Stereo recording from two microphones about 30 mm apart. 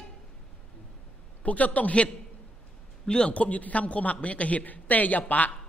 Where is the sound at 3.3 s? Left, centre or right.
Left.